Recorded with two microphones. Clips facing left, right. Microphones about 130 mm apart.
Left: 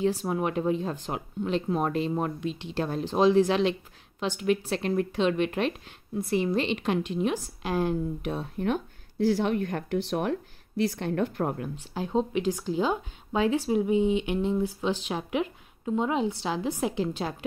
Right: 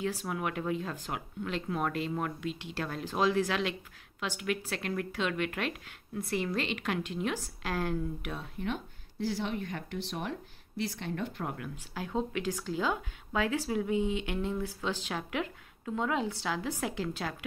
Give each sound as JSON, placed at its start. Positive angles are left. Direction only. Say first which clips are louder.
{"t": 0.0, "sound": "speech", "louder": "left 7 dB", "side_deg": 25}
{"t": 9.2, "sound": "speech", "louder": "left 9 dB", "side_deg": 55}
{"t": 11.5, "sound": "speech", "louder": "left 6 dB", "side_deg": 30}